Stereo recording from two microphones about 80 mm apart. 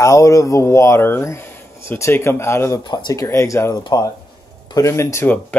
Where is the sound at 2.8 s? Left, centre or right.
Left.